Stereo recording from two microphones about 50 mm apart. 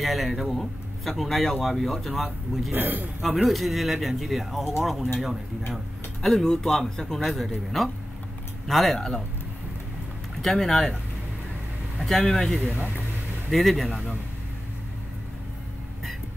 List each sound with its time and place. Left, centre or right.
0.0 s speech: centre
2.7 s a man's voice: right
3.4 s speech: centre
6.2 s speech: centre
7.2 s speech: centre
8.9 s speech: centre
10.4 s speech: centre
12.2 s speech: centre
12.5 s speech: right
13.5 s speech: centre